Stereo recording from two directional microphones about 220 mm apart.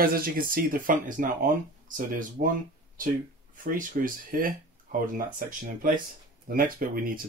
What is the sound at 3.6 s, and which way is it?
Speech, 40° right (ahead or behind).